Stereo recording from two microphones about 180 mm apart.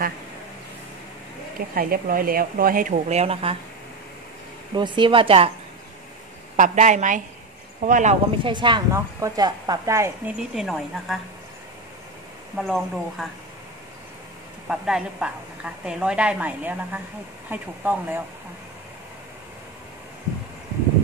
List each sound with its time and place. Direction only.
1.8 s speech: 55° right (ahead or behind); by 3.5 s 35° right (ahead or behind)
4.7 s a woman's voice: 25° right (ahead or behind)
6.5 s speech: 40° right (ahead or behind)
8.5 s a woman's voice: 25° right (ahead or behind)
10.5 s a woman's voice: centre (ahead or behind)
12.5 s a woman's voice: centre (ahead or behind)
14.7 s a woman's voice: 5° right (ahead or behind)